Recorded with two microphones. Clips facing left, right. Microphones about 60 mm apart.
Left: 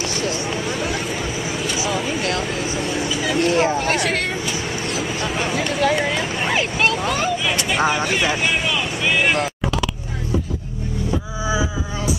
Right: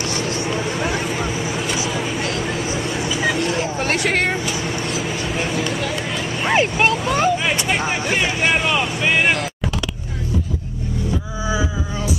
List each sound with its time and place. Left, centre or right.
1.9 s vehicle: left
6.4 s vehicle: centre
9.0 s speech: centre